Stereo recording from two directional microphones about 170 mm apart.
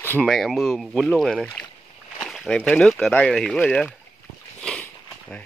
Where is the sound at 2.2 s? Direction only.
5° left (ahead or behind).